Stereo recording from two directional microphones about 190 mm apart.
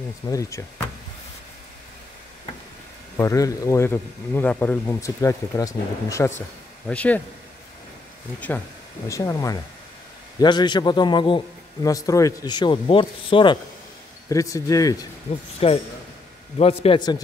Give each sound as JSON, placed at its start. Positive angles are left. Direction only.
{"t": 0.3, "sound": "speech", "side_deg": 15}
{"t": 3.2, "sound": "speech", "side_deg": 15}
{"t": 9.0, "sound": "a man's voice", "side_deg": 15}
{"t": 15.6, "sound": "a man's voice", "side_deg": 30}